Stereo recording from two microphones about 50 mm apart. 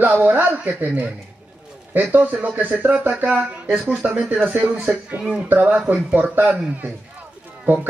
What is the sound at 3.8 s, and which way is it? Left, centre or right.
A man's voice, right.